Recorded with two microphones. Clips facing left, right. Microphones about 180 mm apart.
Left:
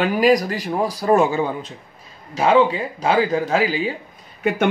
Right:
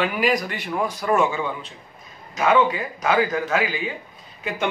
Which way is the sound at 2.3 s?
30° left (ahead or behind).